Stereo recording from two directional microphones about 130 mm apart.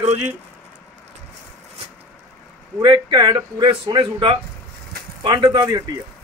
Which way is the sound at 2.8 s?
35° right (ahead or behind).